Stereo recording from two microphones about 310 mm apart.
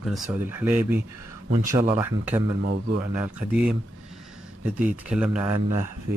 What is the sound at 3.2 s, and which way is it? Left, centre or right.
Speech, centre.